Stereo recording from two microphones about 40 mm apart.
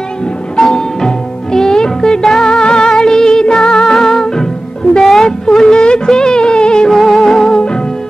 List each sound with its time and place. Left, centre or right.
0.6 s music: centre
3.8 s music: centre
5.0 s music of bollywood: centre
6.9 s music: centre